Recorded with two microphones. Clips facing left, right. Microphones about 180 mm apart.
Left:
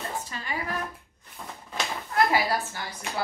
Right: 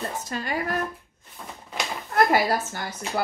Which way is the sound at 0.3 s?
50° right (ahead or behind).